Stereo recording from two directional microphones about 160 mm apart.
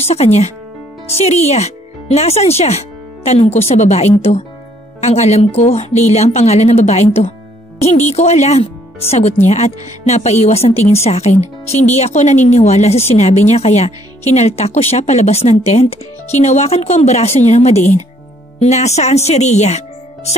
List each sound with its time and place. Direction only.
0.0 s a woman's voice: 40° left (ahead or behind)